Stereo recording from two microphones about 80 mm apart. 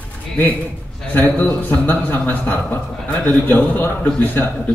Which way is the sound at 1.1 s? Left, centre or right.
Left.